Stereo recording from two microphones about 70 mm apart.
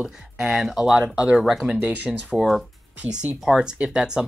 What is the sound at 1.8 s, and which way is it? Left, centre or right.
Speech, right.